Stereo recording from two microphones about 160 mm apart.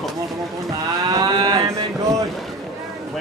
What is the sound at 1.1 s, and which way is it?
Moo, 20° right (ahead or behind).